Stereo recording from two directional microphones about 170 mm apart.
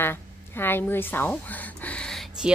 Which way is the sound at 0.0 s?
10° left (ahead or behind).